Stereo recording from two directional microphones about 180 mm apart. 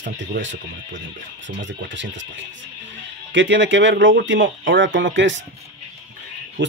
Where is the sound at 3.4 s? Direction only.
90° right.